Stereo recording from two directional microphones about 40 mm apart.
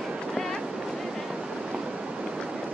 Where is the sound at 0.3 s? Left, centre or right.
Centre.